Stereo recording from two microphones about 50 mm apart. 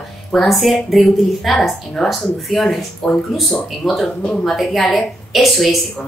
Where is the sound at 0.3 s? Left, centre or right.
Centre.